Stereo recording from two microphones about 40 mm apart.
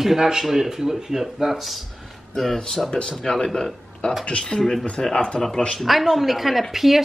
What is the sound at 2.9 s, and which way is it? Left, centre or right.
Speech, centre.